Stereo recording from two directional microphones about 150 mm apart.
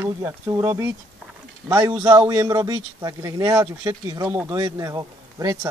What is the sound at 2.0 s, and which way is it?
Speech, 20° right (ahead or behind).